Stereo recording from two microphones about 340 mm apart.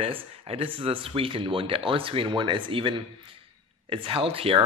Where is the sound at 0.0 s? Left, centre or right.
Centre.